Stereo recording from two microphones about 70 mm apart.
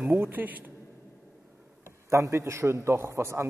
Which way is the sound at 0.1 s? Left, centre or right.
Right.